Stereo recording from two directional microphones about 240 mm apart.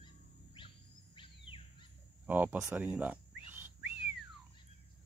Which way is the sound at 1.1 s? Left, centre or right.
Left.